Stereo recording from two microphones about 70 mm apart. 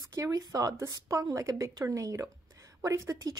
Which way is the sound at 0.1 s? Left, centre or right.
Right.